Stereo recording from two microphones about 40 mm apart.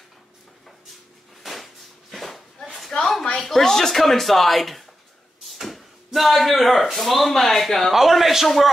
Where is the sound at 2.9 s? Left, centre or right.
Left.